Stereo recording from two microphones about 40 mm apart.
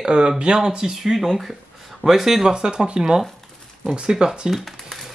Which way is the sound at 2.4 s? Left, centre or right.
Centre.